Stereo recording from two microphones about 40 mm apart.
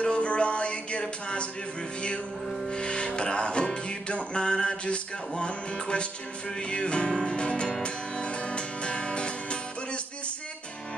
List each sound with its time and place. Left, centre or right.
0.0 s music: left
2.7 s music: left